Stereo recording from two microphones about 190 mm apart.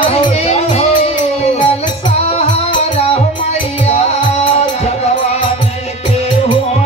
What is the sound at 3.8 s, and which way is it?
Music, 35° left (ahead or behind).